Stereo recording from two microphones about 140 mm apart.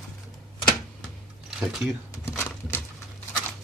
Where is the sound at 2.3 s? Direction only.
20° left (ahead or behind).